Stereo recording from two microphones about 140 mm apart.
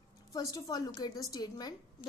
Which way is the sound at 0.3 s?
25° left (ahead or behind).